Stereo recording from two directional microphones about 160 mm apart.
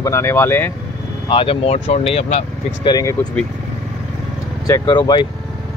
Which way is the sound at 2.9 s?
25° left (ahead or behind).